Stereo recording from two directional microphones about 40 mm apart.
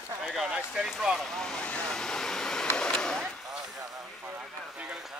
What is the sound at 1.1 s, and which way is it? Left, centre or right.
Speech, centre.